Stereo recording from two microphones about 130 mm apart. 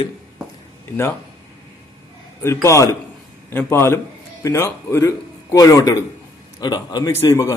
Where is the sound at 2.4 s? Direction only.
20° left (ahead or behind).